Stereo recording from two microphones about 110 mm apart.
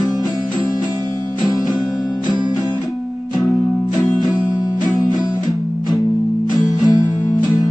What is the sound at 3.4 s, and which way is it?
Music, centre (ahead or behind).